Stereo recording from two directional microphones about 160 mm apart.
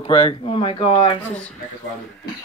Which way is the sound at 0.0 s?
35° left (ahead or behind).